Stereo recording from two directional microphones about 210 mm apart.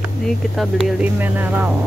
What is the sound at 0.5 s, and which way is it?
Speech, centre (ahead or behind).